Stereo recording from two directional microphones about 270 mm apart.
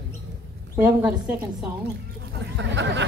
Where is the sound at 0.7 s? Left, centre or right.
Centre.